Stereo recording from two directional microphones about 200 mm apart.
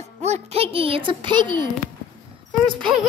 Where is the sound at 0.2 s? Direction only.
30° right (ahead or behind).